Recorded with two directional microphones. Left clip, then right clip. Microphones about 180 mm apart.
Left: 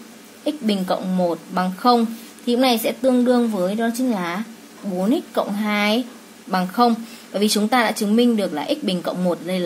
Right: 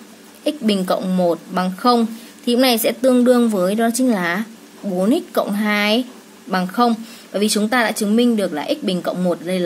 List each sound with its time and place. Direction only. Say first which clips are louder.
0.4 s speech: right 3 dB; 20° right (ahead or behind)